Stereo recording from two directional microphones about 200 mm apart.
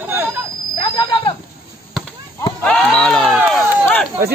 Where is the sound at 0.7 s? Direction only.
25° left (ahead or behind).